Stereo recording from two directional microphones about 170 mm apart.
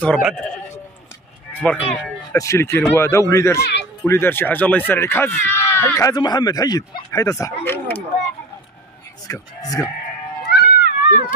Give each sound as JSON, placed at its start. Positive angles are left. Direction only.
{"t": 0.2, "sound": "speech", "side_deg": -5}
{"t": 1.6, "sound": "speech", "side_deg": 10}
{"t": 9.3, "sound": "speech", "side_deg": 20}
{"t": 10.5, "sound": "cat", "side_deg": 65}